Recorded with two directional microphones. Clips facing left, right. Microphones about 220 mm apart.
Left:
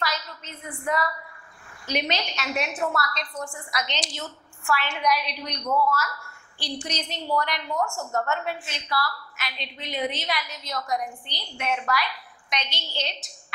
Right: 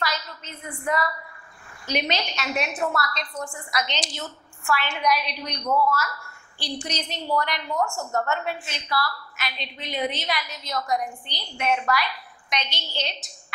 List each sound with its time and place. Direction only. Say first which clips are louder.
0.0 s a sound: right 1 dB; 10° right (ahead or behind)
1.9 s a woman's voice: right 1 dB; 10° right (ahead or behind)
5.7 s a woman's voice: right 1 dB; 30° right (ahead or behind)
6.6 s a woman's voice: right 1 dB; 10° right (ahead or behind)
7.7 s a woman's voice: right 1 dB; 25° right (ahead or behind)